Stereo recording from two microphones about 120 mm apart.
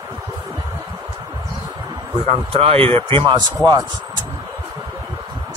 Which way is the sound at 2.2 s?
55° right (ahead or behind).